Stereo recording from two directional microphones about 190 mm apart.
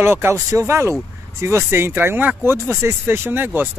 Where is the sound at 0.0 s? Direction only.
15° right (ahead or behind).